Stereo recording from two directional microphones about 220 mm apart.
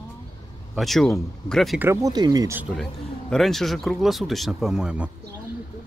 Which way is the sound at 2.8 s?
Centre (ahead or behind).